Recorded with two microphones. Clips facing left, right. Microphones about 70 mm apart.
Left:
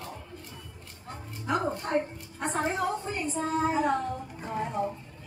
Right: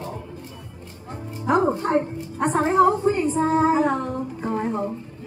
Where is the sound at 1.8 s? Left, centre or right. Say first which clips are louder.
Right 7 dB; right.